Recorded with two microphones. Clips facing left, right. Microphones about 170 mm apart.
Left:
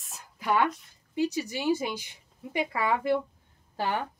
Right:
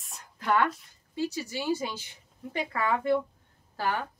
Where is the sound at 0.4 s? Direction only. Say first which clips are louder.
Even; 10° left (ahead or behind).